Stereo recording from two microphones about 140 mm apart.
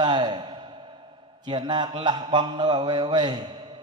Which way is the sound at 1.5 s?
30° right (ahead or behind).